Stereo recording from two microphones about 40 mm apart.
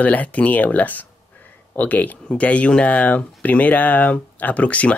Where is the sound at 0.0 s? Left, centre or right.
Left.